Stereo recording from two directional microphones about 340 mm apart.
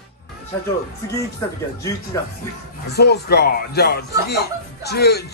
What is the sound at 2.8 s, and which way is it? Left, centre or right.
Speech, left.